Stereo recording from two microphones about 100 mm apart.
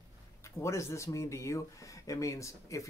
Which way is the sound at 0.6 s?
30° left (ahead or behind).